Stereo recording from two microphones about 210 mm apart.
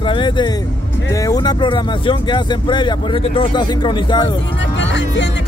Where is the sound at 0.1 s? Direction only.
20° left (ahead or behind).